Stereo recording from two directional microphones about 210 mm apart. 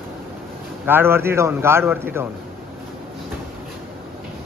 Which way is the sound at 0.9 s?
10° right (ahead or behind).